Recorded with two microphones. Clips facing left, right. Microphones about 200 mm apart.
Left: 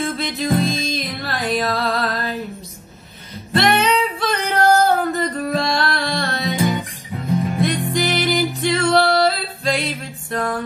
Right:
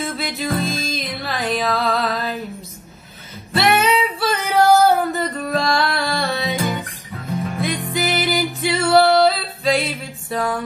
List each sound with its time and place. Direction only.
0.0 s music: centre (ahead or behind)
3.5 s singing: 5° right (ahead or behind)
6.8 s music: 15° left (ahead or behind)
7.6 s music: centre (ahead or behind)